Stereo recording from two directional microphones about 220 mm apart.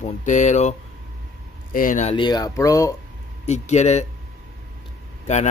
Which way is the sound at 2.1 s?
20° left (ahead or behind).